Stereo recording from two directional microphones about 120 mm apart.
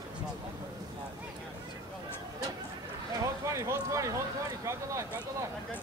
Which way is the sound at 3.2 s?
25° right (ahead or behind).